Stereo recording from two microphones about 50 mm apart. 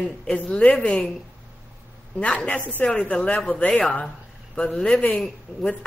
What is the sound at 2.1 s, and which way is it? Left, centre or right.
Speech, left.